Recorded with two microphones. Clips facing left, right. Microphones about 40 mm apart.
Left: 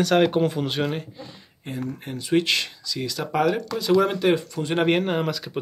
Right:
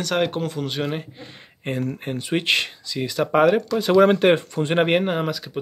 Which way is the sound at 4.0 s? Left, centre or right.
Right.